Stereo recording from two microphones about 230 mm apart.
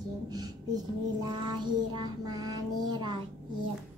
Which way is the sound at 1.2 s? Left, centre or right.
Centre.